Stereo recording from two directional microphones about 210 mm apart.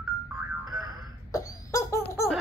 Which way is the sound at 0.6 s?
20° right (ahead or behind).